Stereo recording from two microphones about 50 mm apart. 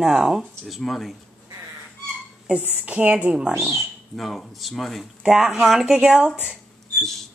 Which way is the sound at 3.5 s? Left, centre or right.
Right.